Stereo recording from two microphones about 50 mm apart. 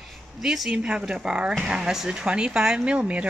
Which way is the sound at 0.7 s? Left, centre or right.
Centre.